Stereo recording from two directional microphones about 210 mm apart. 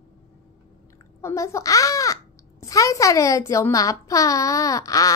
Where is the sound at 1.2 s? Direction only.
15° left (ahead or behind).